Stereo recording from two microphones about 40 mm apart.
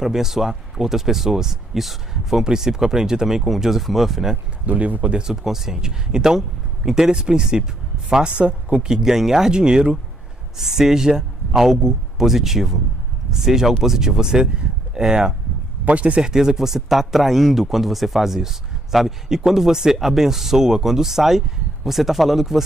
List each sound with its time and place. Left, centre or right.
0.0 s speech: centre
2.4 s speech: centre
4.6 s speech: right
5.2 s speech: centre
10.6 s speech: centre
15.8 s speech: right
16.2 s speech: centre